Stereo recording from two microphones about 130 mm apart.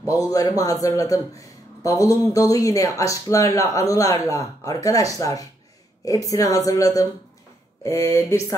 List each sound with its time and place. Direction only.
0.1 s a man's voice: 30° left (ahead or behind)
1.4 s a sound: 25° left (ahead or behind)
2.3 s a man's voice: 25° left (ahead or behind)